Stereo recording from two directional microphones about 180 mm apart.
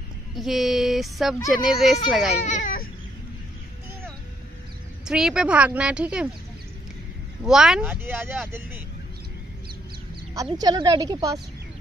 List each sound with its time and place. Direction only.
0.4 s a woman's voice: centre (ahead or behind)
2.4 s baby cry: 45° left (ahead or behind)
5.0 s a woman's voice: 5° right (ahead or behind)
7.4 s speech: 5° right (ahead or behind)
10.3 s a woman's voice: 20° right (ahead or behind)